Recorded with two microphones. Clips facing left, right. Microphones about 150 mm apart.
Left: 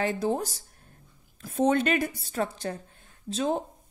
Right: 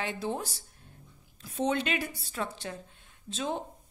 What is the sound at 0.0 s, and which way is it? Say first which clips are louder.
A woman's voice: left 6 dB; 40° left (ahead or behind).